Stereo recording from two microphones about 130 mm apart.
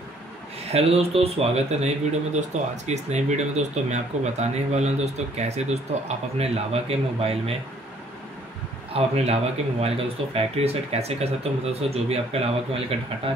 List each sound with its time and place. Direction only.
0.7 s speech: 50° right (ahead or behind)
2.3 s speech: 65° right (ahead or behind)
8.9 s speech: 55° right (ahead or behind)